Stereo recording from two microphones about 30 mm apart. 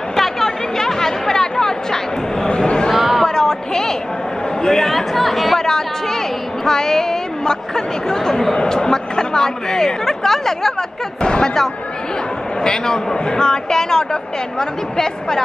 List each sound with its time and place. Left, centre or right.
0.1 s chatter: centre
2.4 s a sound: left
2.9 s a sound: centre
3.3 s a sound: centre
4.6 s a man's voice: centre
4.9 s speech: centre
5.6 s chatter: centre
6.6 s speech: centre
11.2 s speech: left
12.6 s speech: left